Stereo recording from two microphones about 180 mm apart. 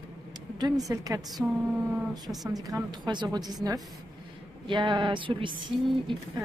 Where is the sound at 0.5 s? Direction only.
20° right (ahead or behind).